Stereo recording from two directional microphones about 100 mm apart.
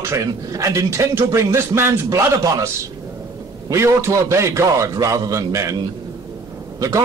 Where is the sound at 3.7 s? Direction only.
25° right (ahead or behind).